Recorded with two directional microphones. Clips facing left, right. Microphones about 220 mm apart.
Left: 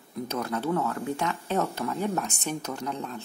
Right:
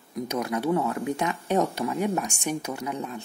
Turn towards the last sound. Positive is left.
turn(degrees=-10)  # may be behind; listen again after turning